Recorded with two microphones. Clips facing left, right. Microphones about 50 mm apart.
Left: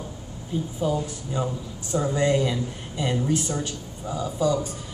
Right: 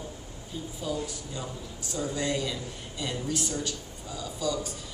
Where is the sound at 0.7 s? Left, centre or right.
Left.